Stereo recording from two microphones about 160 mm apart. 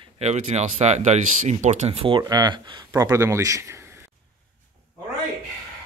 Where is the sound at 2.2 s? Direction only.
25° right (ahead or behind).